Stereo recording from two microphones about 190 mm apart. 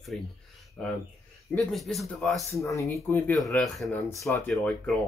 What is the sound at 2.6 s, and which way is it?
Speech, 15° left (ahead or behind).